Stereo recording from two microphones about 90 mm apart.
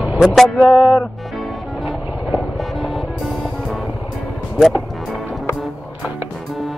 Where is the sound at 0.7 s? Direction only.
5° right (ahead or behind).